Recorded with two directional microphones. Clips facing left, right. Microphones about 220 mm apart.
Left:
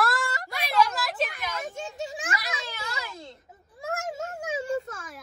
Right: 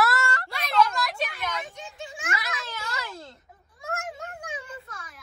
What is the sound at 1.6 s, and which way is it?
Children playing, 45° left (ahead or behind).